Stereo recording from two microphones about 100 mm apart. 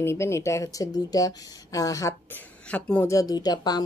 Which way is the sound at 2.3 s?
15° left (ahead or behind).